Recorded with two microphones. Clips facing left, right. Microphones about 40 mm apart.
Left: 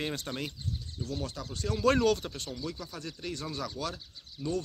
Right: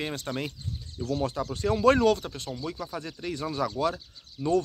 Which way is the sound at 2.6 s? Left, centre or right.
Right.